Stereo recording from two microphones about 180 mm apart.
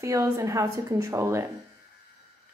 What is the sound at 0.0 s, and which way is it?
A man's voice, 15° right (ahead or behind).